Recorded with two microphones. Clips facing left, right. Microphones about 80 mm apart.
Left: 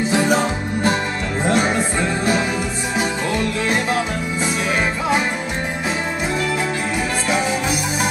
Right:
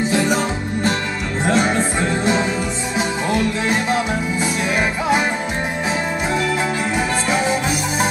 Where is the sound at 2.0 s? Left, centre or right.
Right.